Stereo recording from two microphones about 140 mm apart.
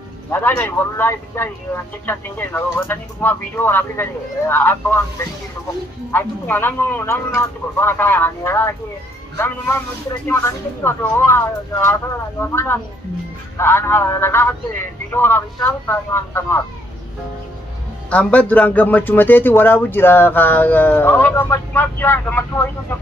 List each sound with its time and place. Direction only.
0.3 s speech: 15° left (ahead or behind)
6.1 s speech: 15° left (ahead or behind)
10.2 s speech: 15° left (ahead or behind)
18.1 s speech: 10° left (ahead or behind)